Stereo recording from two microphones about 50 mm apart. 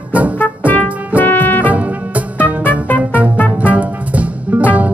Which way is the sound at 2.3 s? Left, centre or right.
Left.